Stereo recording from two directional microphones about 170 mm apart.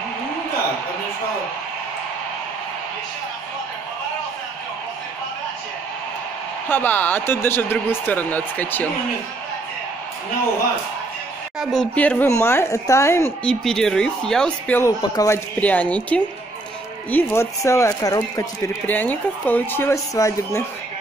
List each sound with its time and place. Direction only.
6.7 s speech: 10° left (ahead or behind)
11.6 s speech: 5° left (ahead or behind)
13.5 s speech: 5° left (ahead or behind)
14.8 s speech: 20° left (ahead or behind)